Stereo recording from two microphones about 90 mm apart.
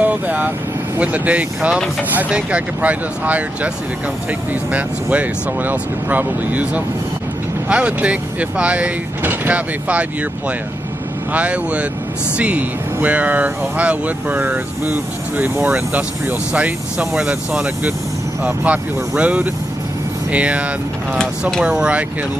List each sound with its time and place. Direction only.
0.0 s speech: 20° right (ahead or behind)
11.3 s speech: 15° right (ahead or behind)
21.2 s speech: 5° left (ahead or behind)
21.6 s speech: 10° right (ahead or behind)